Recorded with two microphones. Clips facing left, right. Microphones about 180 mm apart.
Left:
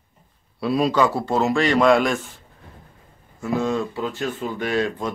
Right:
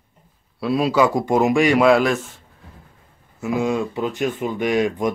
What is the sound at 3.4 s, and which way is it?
A man's voice, 10° right (ahead or behind).